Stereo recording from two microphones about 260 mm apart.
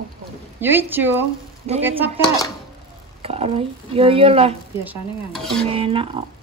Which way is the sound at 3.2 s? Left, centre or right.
Right.